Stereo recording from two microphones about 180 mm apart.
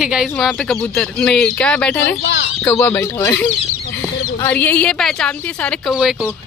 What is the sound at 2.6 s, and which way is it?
Speech, 10° left (ahead or behind).